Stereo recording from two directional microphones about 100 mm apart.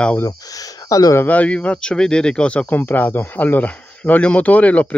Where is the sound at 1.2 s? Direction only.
15° left (ahead or behind).